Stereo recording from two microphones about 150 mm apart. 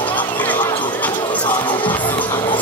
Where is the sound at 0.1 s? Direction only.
10° left (ahead or behind).